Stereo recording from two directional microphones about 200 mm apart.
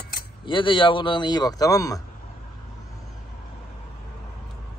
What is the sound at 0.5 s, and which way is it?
A man's voice, 25° left (ahead or behind).